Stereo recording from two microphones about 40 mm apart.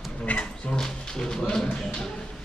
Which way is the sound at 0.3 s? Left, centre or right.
Left.